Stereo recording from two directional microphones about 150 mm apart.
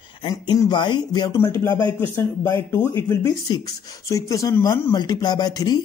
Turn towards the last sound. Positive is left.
turn(degrees=25)  # may be behind; listen again after turning